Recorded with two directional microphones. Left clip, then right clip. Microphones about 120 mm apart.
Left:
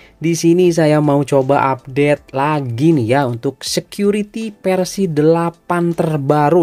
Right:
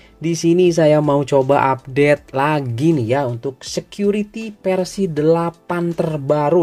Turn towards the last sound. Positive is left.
turn(degrees=50)  # may be behind; listen again after turning